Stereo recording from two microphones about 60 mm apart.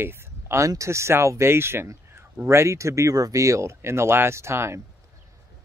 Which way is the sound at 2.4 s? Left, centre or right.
Right.